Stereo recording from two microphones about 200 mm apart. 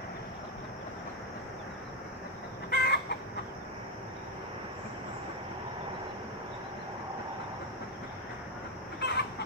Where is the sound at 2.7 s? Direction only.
55° left (ahead or behind).